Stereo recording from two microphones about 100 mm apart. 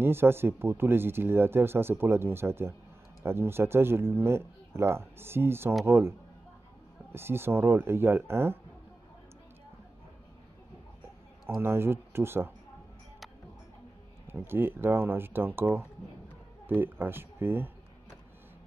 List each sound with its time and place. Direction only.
0.0 s speech: 25° right (ahead or behind)
11.4 s speech: 25° right (ahead or behind)
14.2 s speech: 20° right (ahead or behind)